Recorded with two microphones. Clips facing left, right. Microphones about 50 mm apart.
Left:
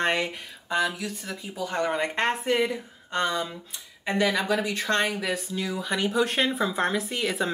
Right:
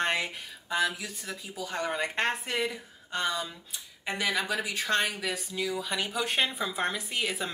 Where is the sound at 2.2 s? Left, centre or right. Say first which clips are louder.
Left 7 dB; centre.